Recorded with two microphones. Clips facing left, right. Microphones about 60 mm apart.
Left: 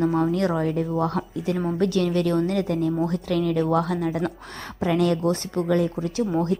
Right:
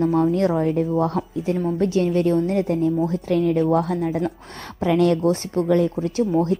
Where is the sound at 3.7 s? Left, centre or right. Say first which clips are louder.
Right 2 dB; left.